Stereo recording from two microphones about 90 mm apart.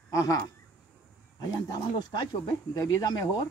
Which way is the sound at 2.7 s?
45° left (ahead or behind).